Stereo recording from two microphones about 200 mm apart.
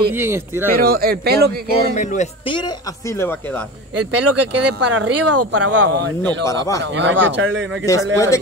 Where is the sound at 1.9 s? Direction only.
35° left (ahead or behind).